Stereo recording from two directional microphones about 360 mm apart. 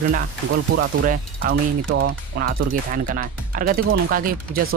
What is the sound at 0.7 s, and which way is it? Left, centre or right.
Speech, right.